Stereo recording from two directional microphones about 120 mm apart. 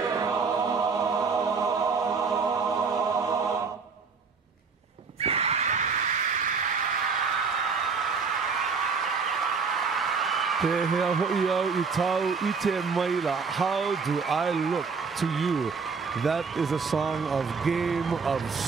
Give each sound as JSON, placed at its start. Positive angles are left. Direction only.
{"t": 0.0, "sound": "choir", "side_deg": -30}
{"t": 5.2, "sound": "neigh", "side_deg": -60}
{"t": 8.6, "sound": "a sound", "side_deg": 0}
{"t": 16.2, "sound": "speech", "side_deg": 0}